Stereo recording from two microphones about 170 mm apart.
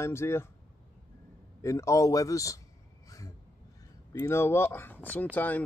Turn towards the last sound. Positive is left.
turn(degrees=10)  # may be behind; listen again after turning